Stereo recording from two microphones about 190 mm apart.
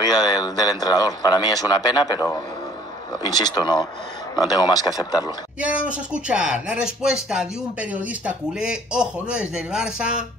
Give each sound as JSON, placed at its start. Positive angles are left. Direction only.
{"t": 0.0, "sound": "speech", "side_deg": 20}
{"t": 5.6, "sound": "speech", "side_deg": -5}